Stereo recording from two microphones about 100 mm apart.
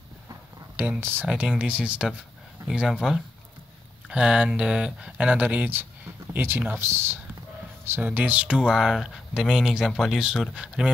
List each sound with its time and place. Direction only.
0.8 s speech: 20° right (ahead or behind)
1.2 s speech: 10° right (ahead or behind)